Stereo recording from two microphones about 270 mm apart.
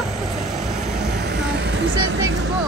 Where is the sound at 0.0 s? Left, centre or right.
Centre.